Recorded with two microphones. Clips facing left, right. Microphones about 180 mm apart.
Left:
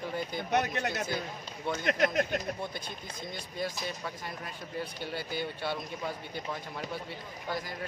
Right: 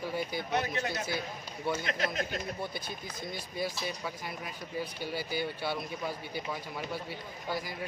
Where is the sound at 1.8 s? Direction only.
60° left (ahead or behind).